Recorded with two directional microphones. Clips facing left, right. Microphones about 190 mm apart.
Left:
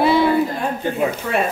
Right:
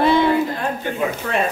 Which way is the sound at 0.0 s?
5° left (ahead or behind).